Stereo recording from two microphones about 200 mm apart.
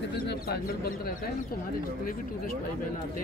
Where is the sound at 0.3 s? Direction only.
50° left (ahead or behind).